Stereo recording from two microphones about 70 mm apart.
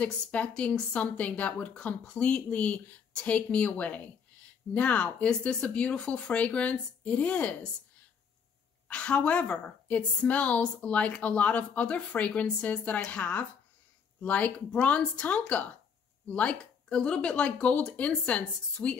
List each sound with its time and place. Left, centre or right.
0.0 s a woman's voice: centre
8.8 s a woman's voice: centre